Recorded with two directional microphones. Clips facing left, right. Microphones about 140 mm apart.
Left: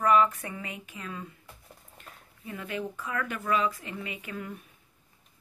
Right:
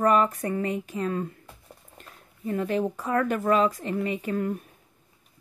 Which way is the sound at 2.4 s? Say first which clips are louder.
Right 9 dB; 40° right (ahead or behind).